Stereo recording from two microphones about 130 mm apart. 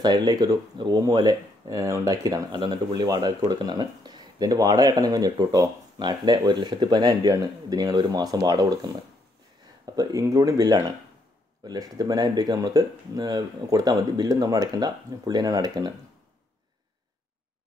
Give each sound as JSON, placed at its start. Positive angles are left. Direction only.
{"t": 0.0, "sound": "speech", "side_deg": -35}